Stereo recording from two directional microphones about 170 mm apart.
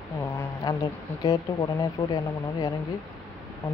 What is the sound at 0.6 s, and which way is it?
Speech, 20° left (ahead or behind).